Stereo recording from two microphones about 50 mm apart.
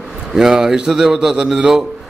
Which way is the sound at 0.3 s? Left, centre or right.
Centre.